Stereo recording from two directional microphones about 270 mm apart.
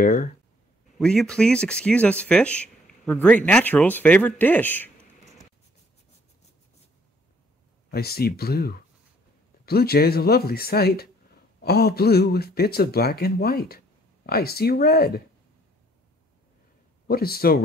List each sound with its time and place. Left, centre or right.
0.0 s a sound: left
0.9 s speech: centre
7.9 s speech: left
17.1 s speech: left